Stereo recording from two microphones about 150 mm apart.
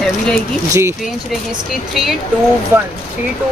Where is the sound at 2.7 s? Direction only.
15° right (ahead or behind).